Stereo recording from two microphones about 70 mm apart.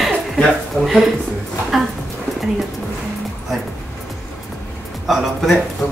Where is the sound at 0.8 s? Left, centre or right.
Centre.